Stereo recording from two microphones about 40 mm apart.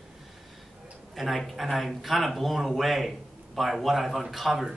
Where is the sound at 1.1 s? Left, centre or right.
Centre.